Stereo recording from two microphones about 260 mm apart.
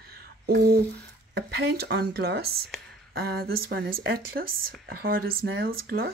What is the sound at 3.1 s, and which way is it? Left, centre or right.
Speech, right.